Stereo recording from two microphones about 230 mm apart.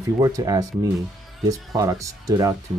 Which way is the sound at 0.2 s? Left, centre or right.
Centre.